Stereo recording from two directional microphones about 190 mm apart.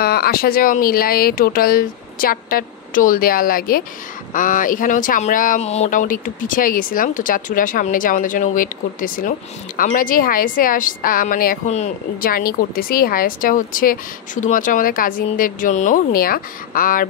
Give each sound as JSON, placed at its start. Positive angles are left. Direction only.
{"t": 0.0, "sound": "a woman's voice", "side_deg": 55}